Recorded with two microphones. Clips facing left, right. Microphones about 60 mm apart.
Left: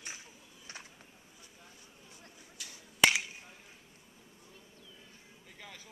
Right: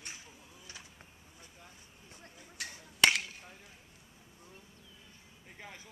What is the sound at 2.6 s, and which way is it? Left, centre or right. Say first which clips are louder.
Finger snapping: right 7 dB; right.